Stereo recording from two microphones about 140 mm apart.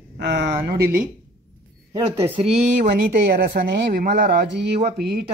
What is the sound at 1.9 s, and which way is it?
Speech, 45° right (ahead or behind).